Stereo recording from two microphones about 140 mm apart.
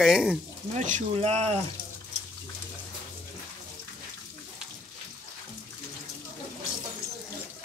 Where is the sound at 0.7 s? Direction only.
60° right (ahead or behind).